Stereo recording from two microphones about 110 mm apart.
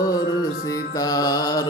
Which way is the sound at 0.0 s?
35° left (ahead or behind).